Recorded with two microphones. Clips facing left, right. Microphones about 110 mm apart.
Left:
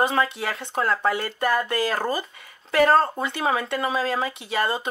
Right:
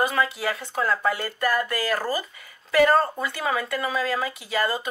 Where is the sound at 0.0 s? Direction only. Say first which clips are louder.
Left 1 dB; 30° left (ahead or behind).